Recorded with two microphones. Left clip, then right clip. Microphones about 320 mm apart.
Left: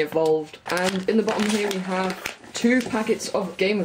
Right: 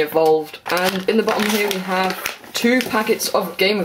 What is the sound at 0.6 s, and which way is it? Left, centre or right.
Speech, centre.